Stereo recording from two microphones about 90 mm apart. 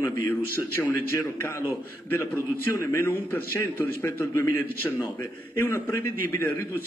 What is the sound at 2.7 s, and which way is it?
A man's voice, 35° left (ahead or behind).